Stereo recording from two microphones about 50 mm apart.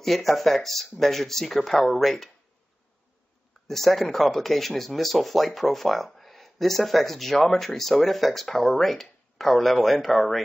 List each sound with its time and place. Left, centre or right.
0.0 s speech: centre
3.6 s speech: centre